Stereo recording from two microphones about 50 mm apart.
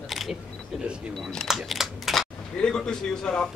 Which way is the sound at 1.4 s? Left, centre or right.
Centre.